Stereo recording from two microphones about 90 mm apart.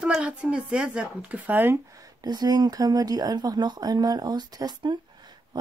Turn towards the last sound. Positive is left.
turn(degrees=-55)  # may be behind; listen again after turning